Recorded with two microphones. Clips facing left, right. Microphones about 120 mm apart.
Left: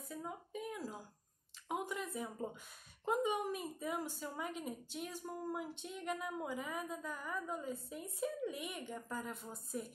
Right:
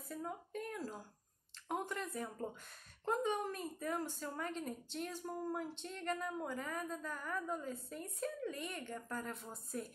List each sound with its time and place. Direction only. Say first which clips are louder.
0.1 s a woman's voice: right 2 dB; 5° left (ahead or behind)